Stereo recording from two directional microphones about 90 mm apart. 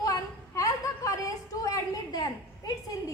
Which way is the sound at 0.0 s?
40° left (ahead or behind).